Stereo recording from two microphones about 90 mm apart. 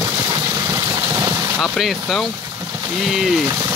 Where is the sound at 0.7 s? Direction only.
40° right (ahead or behind).